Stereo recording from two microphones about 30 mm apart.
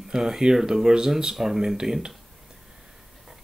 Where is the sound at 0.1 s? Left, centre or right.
Centre.